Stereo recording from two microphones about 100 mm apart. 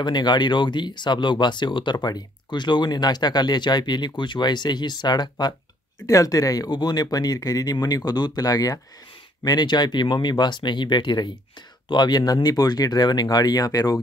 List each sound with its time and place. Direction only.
0.0 s speech: 45° left (ahead or behind)